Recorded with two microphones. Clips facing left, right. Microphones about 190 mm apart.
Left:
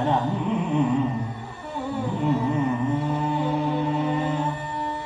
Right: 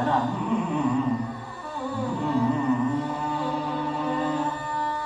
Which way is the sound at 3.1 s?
20° left (ahead or behind).